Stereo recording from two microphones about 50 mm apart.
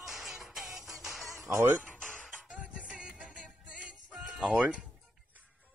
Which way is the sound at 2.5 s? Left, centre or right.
Right.